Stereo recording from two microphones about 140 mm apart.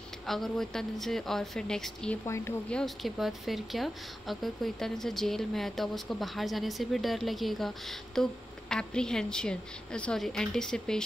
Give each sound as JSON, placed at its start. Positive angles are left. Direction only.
{"t": 0.3, "sound": "speech", "side_deg": 0}
{"t": 2.2, "sound": "a woman's voice", "side_deg": 20}
{"t": 2.7, "sound": "speech", "side_deg": 0}